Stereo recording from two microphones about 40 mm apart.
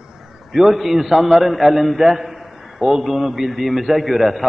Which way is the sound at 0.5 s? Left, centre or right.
Centre.